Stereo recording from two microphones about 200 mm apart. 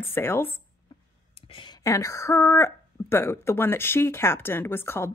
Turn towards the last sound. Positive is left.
turn(degrees=10)  # may be behind; listen again after turning